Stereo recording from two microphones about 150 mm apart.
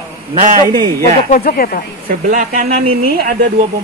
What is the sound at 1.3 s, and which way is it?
Speech, 75° left (ahead or behind).